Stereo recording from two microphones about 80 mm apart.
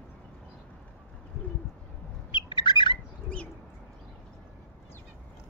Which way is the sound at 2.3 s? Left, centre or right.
Left.